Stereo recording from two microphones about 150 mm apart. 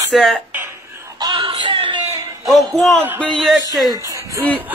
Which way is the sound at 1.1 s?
30° right (ahead or behind).